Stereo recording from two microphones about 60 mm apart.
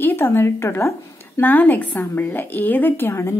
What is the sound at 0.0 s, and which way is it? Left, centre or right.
Speech, left.